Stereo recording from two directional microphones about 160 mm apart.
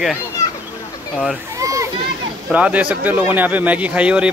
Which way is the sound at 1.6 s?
20° right (ahead or behind).